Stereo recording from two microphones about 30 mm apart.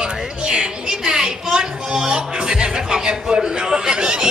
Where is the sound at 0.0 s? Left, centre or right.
Right.